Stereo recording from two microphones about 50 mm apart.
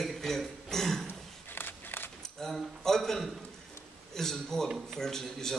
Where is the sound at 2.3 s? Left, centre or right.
Centre.